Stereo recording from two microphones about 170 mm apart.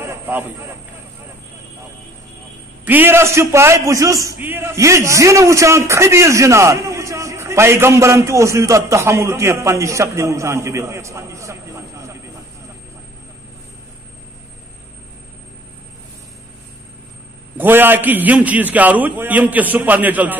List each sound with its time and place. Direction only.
0.0 s a sound: 15° right (ahead or behind)
2.8 s a man's voice: 10° right (ahead or behind)
17.6 s a man's voice: 10° right (ahead or behind)